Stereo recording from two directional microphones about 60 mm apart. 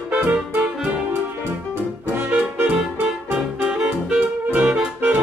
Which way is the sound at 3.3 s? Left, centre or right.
Centre.